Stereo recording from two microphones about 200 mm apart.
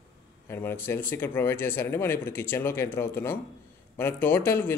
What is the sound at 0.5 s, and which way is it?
Speech, 10° left (ahead or behind).